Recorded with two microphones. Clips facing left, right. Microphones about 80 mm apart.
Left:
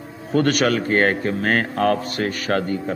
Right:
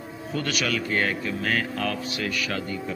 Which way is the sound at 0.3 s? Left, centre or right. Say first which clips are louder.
Left 9 dB; left.